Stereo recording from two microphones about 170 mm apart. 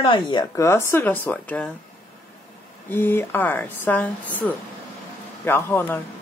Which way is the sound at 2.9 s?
10° left (ahead or behind).